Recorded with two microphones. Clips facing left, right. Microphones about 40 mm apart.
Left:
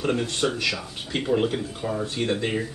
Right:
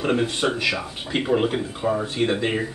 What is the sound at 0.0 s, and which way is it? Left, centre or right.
Speech, centre.